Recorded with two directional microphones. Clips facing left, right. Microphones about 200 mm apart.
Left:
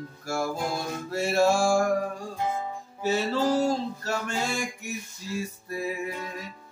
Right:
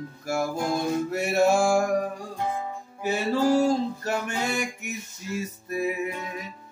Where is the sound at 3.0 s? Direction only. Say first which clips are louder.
Right 1 dB; 15° right (ahead or behind).